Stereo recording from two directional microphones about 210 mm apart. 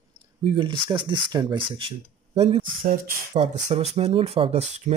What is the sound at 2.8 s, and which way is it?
Speech, 45° right (ahead or behind).